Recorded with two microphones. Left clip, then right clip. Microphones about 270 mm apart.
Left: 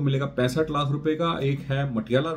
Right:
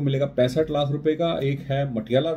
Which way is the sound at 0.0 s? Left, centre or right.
Centre.